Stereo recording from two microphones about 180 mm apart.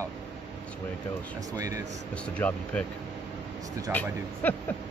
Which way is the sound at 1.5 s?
20° right (ahead or behind).